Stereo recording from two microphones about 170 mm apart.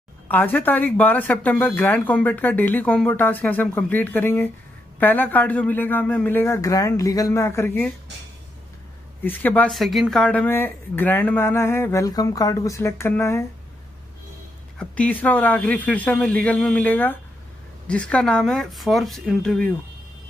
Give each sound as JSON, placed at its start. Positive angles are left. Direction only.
{"t": 0.3, "sound": "speech", "side_deg": 10}
{"t": 9.2, "sound": "speech", "side_deg": 10}
{"t": 14.8, "sound": "speech", "side_deg": 10}